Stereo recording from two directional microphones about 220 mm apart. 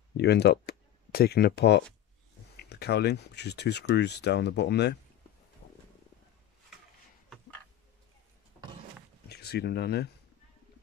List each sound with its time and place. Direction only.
0.2 s speech: 50° left (ahead or behind)
9.3 s speech: 45° left (ahead or behind)